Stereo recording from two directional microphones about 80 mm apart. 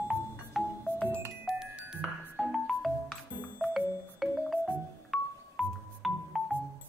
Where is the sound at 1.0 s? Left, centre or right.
Right.